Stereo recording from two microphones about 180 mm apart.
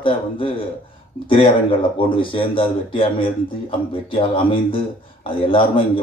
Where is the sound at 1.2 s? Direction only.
30° left (ahead or behind).